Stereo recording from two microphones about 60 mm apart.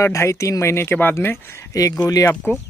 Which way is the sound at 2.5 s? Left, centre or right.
Left.